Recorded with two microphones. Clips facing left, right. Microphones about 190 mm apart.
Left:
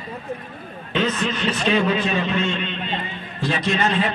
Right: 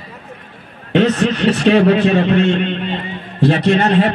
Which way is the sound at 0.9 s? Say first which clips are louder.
Right 9 dB; 70° right (ahead or behind).